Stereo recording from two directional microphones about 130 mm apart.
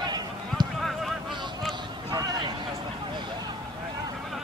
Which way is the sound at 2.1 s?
30° right (ahead or behind).